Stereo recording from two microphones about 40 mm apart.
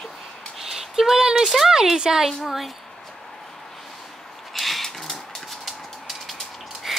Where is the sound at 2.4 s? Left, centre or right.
Centre.